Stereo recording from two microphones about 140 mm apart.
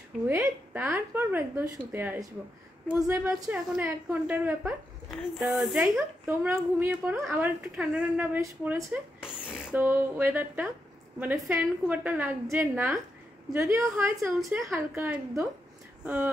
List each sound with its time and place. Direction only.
0.3 s a woman's voice: 20° right (ahead or behind); by 5.9 s centre (ahead or behind)
6.2 s a woman's voice: 10° right (ahead or behind)
9.2 s a woman's voice: 5° right (ahead or behind)